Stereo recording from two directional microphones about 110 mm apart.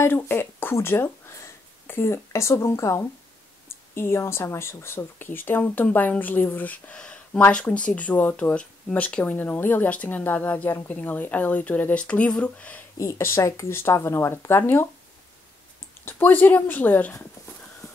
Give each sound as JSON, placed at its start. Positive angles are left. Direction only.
{"t": 0.0, "sound": "speech", "side_deg": 20}
{"t": 13.0, "sound": "speech", "side_deg": 25}
{"t": 16.1, "sound": "speech", "side_deg": 15}